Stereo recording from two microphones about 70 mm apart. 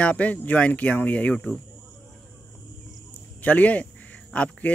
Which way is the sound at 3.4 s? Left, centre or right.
Left.